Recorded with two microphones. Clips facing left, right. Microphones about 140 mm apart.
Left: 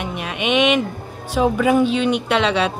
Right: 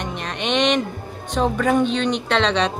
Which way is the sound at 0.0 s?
5° left (ahead or behind).